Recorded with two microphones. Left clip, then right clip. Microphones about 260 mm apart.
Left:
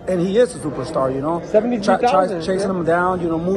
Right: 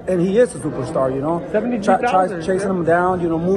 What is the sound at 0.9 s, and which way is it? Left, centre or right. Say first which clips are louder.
A man's voice: right 1 dB; centre.